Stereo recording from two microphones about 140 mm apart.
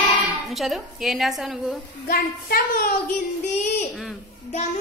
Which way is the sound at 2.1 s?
90° left.